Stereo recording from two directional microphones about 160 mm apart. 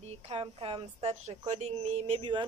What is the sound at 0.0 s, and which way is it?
A woman's voice, 40° right (ahead or behind).